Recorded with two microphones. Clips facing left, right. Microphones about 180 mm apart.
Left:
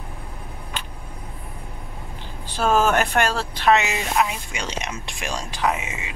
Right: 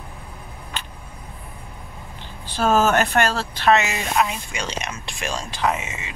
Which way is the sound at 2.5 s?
10° left (ahead or behind).